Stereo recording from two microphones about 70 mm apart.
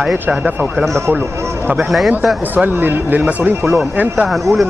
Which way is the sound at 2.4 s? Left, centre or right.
Right.